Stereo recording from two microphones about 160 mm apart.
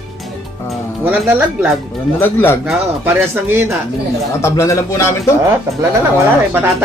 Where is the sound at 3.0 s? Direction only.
15° right (ahead or behind).